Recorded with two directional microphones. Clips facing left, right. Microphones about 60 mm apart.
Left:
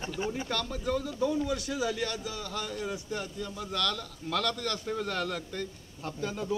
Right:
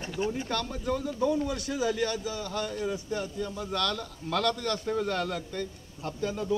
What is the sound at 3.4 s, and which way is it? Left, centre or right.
A man's voice, centre.